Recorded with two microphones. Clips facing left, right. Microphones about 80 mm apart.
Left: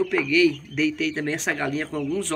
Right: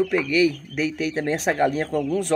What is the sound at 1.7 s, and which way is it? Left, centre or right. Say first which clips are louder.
Speech: right 3 dB; right.